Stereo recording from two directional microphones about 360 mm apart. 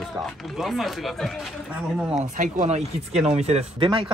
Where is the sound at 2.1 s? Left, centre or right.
Right.